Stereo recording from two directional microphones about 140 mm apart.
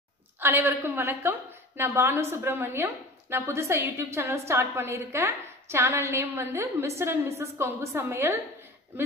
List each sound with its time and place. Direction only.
0.4 s a woman's voice: 15° right (ahead or behind)